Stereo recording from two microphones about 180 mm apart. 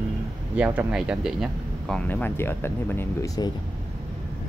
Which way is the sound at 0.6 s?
10° right (ahead or behind).